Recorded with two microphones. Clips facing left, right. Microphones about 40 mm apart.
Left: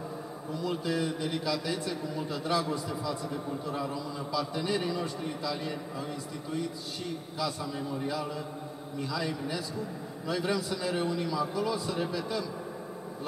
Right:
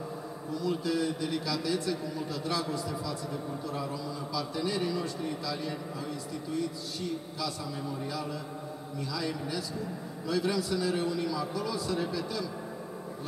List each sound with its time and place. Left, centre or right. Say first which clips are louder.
0.7 s a man's voice: right 1 dB; left
4.4 s a man's voice: left 1 dB; left
9.1 s a man's voice: left 1 dB; left